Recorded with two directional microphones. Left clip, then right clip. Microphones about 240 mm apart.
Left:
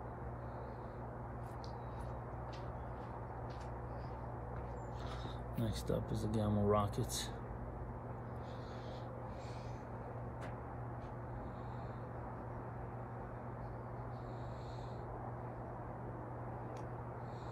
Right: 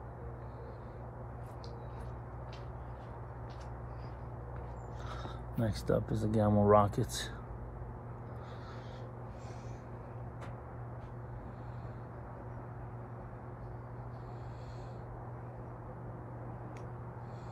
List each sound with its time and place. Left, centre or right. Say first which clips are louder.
5.6 s speech: right 8 dB; right